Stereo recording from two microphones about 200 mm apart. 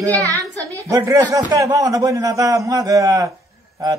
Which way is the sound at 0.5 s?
15° right (ahead or behind).